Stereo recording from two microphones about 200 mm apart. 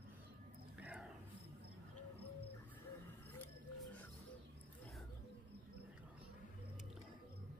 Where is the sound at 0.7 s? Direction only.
5° right (ahead or behind).